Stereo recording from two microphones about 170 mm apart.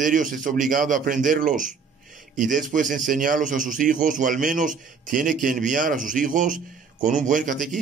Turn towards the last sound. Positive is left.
turn(degrees=-50)  # may be behind; listen again after turning